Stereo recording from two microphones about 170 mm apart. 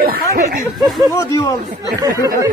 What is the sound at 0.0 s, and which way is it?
Speech, 60° right (ahead or behind).